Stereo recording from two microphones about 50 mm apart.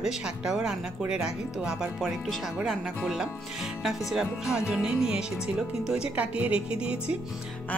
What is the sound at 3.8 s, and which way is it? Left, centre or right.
A woman's voice, centre.